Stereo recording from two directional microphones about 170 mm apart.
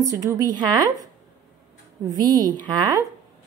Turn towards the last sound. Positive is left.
turn(degrees=-25)  # may be behind; listen again after turning